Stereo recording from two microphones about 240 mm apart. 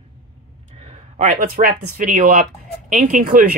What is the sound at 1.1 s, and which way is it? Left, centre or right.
Speech, right.